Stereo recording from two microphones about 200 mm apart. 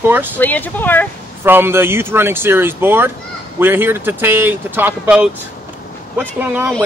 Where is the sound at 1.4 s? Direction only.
10° right (ahead or behind).